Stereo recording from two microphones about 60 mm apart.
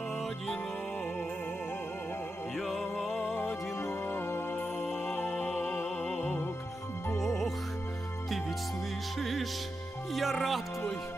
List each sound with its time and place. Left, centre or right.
2.5 s music: centre
4.1 s music: left
4.8 s music: centre
9.2 s music: centre
10.1 s speech: centre